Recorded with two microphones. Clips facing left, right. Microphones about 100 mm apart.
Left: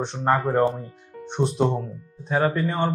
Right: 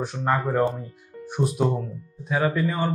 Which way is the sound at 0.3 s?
40° left (ahead or behind).